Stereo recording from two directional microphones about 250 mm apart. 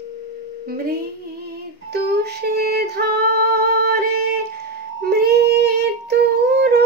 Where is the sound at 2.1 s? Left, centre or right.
Right.